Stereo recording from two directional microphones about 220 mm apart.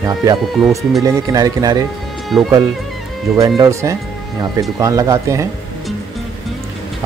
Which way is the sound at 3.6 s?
15° right (ahead or behind).